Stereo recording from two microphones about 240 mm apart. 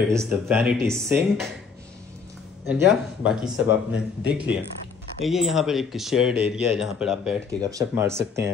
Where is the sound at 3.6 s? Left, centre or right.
Left.